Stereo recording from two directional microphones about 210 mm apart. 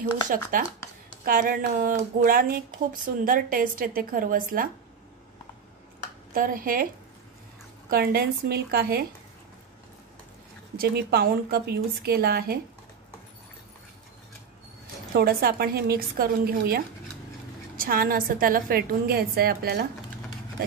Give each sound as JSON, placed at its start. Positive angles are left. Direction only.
{"t": 0.3, "sound": "a woman's voice", "side_deg": -40}
{"t": 6.3, "sound": "a woman's voice", "side_deg": -40}
{"t": 7.9, "sound": "a woman's voice", "side_deg": -45}
{"t": 10.8, "sound": "a woman's voice", "side_deg": -50}
{"t": 15.1, "sound": "a woman's voice", "side_deg": -45}